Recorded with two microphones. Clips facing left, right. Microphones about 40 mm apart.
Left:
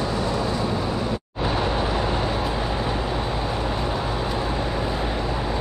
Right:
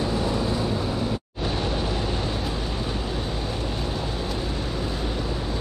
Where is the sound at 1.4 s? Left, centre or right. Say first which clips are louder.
Left 4 dB; centre.